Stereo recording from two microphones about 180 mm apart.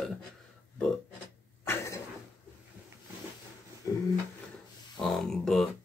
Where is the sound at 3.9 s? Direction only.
20° left (ahead or behind).